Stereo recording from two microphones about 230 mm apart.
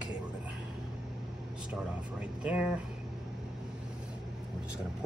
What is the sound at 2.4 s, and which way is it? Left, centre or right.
Speech, centre.